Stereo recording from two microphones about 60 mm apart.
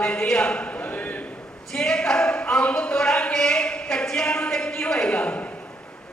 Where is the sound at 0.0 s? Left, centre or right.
Centre.